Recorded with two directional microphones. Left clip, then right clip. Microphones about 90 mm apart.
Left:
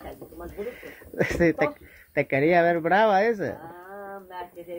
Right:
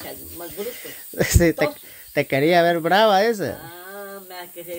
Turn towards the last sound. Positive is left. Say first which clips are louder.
# right 4 dB
turn(degrees=-45)  # may be behind; listen again after turning